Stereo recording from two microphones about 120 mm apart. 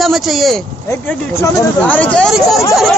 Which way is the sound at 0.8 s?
20° left (ahead or behind).